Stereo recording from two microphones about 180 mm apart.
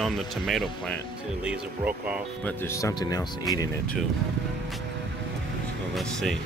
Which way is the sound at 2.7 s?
15° left (ahead or behind).